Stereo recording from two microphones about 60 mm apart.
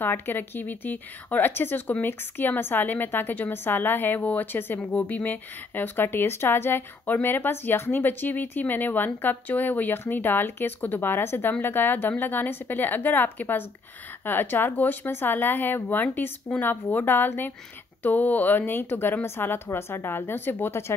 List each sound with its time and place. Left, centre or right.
0.0 s speech: left